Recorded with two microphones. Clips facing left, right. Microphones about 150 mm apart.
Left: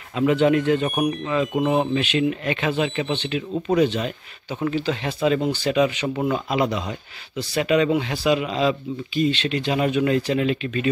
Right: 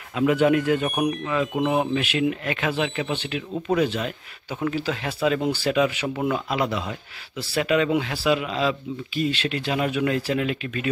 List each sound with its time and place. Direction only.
0.1 s speech: 5° right (ahead or behind)
6.0 s speech: 5° left (ahead or behind)